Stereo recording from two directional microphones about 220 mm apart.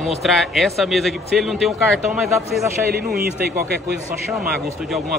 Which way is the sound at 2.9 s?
45° right (ahead or behind).